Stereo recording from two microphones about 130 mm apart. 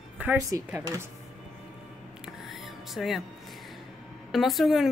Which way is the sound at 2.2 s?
Centre (ahead or behind).